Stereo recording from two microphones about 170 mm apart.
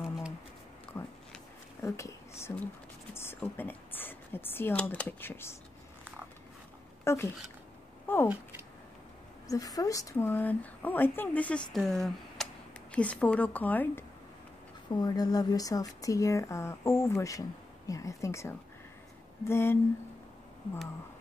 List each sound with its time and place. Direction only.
0.9 s a sound: 15° left (ahead or behind)
2.5 s speech: 15° left (ahead or behind)
7.1 s speech: 15° left (ahead or behind)
8.1 s a sound: 10° left (ahead or behind)
9.5 s speech: 20° left (ahead or behind)
14.9 s speech: 25° left (ahead or behind)